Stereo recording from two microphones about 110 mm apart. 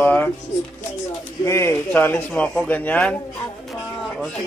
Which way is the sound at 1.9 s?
15° left (ahead or behind).